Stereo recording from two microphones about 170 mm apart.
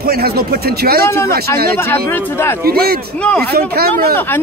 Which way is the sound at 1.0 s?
15° left (ahead or behind).